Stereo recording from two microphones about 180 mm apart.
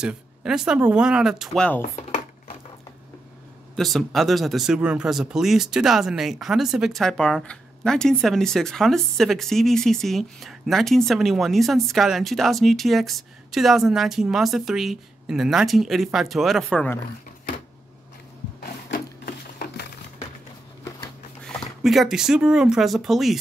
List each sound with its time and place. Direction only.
0.0 s speech: 5° right (ahead or behind)
1.8 s chopping: 40° left (ahead or behind)
3.7 s speech: centre (ahead or behind)
18.6 s a sound: 65° left (ahead or behind)
21.5 s speech: centre (ahead or behind)